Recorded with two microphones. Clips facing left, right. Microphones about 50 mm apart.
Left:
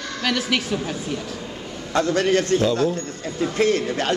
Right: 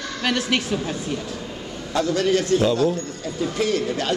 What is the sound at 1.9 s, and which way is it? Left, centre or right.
Speech, left.